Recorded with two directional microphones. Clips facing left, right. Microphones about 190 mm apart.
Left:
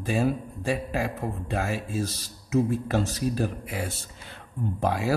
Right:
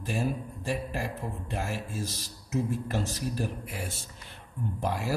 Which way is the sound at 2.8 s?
90° left.